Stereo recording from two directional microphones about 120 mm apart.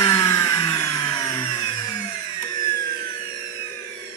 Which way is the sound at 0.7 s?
25° left (ahead or behind).